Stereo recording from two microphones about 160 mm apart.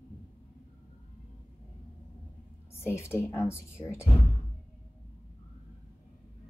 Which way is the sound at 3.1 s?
15° left (ahead or behind).